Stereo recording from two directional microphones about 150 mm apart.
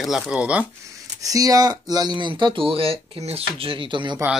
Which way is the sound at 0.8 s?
25° right (ahead or behind).